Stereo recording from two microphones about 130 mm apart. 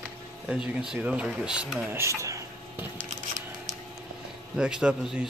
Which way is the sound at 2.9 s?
75° right (ahead or behind).